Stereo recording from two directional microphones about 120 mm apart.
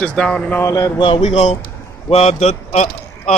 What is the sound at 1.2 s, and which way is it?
A man's voice, 70° left (ahead or behind).